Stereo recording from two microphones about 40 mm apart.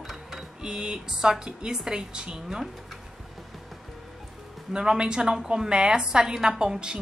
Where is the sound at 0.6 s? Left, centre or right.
Centre.